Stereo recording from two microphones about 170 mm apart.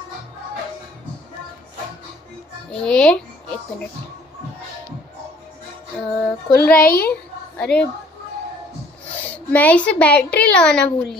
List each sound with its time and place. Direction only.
2.7 s a child's voice: 5° left (ahead or behind)
6.5 s a child's voice: 5° left (ahead or behind)
6.8 s a woman's voice: 60° left (ahead or behind)
7.1 s a sound: 5° left (ahead or behind)
9.5 s a woman's voice: 10° left (ahead or behind)